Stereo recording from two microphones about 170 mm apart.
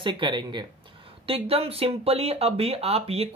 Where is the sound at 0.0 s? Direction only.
30° right (ahead or behind).